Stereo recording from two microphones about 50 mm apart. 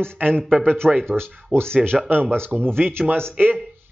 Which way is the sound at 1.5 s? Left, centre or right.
Centre.